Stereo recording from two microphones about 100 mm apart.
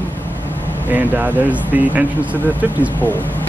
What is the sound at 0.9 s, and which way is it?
Speech, 15° right (ahead or behind).